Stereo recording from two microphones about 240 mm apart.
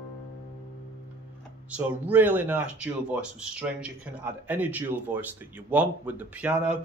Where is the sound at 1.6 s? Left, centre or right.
Centre.